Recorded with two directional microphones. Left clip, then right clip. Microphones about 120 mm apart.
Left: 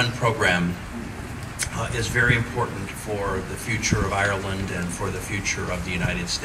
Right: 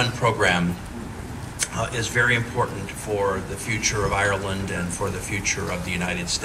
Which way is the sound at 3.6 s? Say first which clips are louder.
Right 2 dB; 45° right (ahead or behind).